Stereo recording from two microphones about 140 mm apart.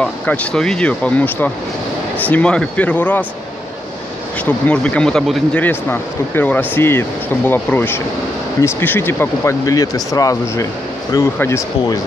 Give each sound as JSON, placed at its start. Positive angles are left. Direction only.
{"t": 0.0, "sound": "speech", "side_deg": 10}
{"t": 4.5, "sound": "speech", "side_deg": 10}
{"t": 5.6, "sound": "speech", "side_deg": 15}